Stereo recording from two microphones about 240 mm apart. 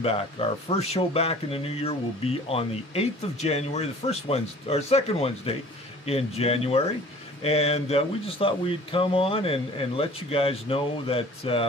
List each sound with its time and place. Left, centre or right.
0.0 s speech: left